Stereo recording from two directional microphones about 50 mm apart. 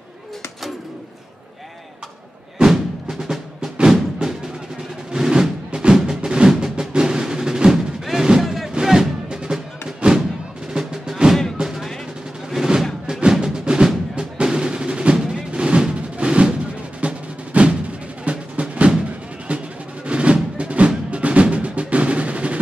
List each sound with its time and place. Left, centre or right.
2.6 s music: centre
5.1 s music: centre
12.4 s percussion: centre
13.0 s music: centre
20.1 s music: right
20.5 s percussion: right